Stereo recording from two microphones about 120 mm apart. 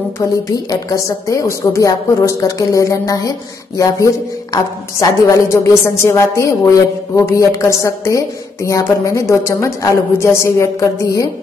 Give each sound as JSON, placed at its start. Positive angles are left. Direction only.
{"t": 0.2, "sound": "a woman's voice", "side_deg": 30}
{"t": 5.3, "sound": "a woman's voice", "side_deg": 25}